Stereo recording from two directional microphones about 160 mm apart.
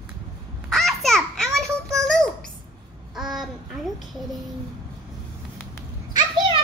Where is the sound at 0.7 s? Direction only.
Centre (ahead or behind).